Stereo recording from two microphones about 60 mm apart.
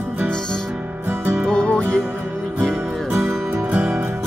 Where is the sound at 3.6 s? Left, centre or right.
Right.